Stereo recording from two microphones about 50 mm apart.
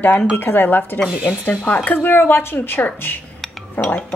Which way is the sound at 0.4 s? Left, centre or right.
Left.